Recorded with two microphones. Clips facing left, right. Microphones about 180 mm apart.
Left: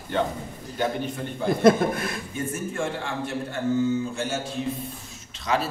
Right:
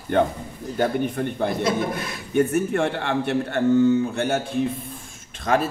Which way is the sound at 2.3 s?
65° right (ahead or behind).